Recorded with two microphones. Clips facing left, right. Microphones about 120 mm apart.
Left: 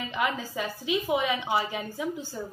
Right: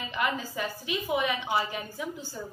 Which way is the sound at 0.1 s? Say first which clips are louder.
Even; 15° left (ahead or behind).